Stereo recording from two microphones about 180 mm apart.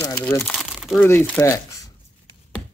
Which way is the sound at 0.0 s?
15° left (ahead or behind).